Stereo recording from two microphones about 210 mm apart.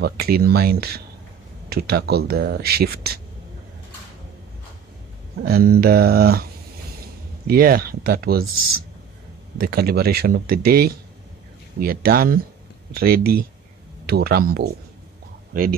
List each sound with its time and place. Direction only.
0.0 s speech: 45° right (ahead or behind)
5.4 s speech: 45° right (ahead or behind)
7.4 s speech: 45° right (ahead or behind)
9.6 s speech: 45° right (ahead or behind)